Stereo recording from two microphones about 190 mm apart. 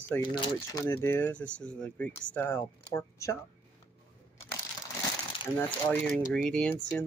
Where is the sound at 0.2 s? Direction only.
25° left (ahead or behind).